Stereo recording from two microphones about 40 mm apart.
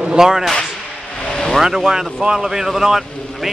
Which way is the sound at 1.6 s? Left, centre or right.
Centre.